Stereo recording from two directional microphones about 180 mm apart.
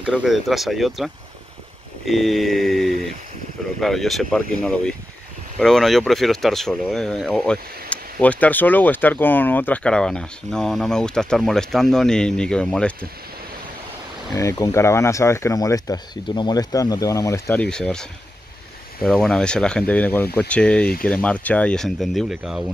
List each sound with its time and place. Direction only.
0.0 s speech: 5° right (ahead or behind)
14.3 s speech: 15° left (ahead or behind); by 22.7 s 5° right (ahead or behind)